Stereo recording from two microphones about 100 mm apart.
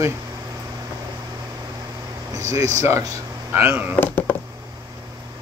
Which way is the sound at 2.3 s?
35° right (ahead or behind).